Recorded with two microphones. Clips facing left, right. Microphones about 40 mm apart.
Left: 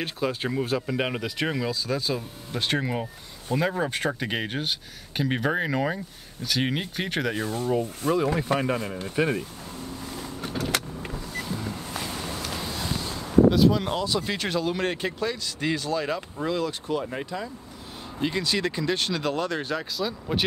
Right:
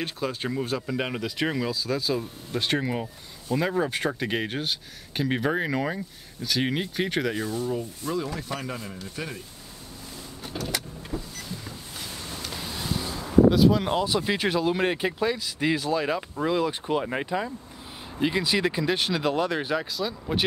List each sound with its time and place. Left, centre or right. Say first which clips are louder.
0.0 s speech: left 2 dB; centre
7.4 s speech: left 3 dB; left
13.5 s speech: right 1 dB; centre
16.8 s speech: right 2 dB; right
18.2 s speech: right 2 dB; centre